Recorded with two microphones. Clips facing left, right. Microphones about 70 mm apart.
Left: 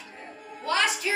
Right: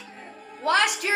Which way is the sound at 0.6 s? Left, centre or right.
Right.